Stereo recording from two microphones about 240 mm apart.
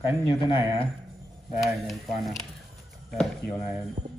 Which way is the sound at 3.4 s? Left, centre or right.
Left.